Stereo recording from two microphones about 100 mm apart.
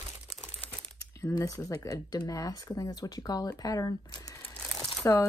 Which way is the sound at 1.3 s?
35° left (ahead or behind).